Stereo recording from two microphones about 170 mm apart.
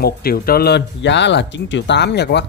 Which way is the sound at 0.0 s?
60° left (ahead or behind).